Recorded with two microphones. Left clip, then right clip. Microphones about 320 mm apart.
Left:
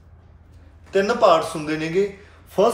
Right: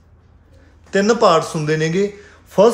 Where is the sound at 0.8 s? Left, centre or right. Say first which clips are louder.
Right 3 dB; right.